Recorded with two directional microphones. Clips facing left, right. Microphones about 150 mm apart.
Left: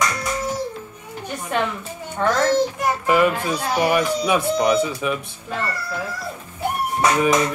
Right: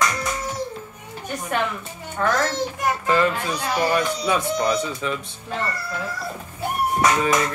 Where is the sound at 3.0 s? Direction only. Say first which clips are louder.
Left 3 dB; 15° left (ahead or behind).